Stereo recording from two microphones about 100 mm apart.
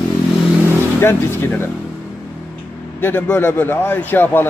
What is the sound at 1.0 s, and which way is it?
Speech, 20° left (ahead or behind).